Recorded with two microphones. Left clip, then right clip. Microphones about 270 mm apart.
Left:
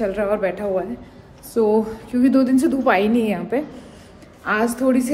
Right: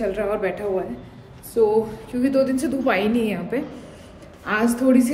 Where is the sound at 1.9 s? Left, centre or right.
Centre.